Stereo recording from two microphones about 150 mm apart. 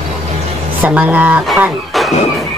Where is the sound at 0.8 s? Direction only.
10° right (ahead or behind).